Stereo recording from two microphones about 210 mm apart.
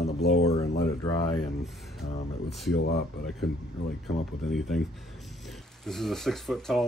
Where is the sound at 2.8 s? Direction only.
50° left (ahead or behind).